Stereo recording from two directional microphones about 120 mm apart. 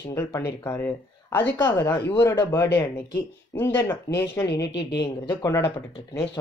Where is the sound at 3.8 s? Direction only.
20° left (ahead or behind).